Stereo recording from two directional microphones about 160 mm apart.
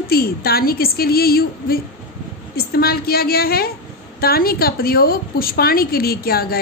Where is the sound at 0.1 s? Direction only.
70° left (ahead or behind).